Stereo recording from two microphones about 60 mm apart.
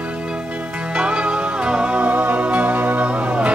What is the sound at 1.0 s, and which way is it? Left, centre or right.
Music, centre.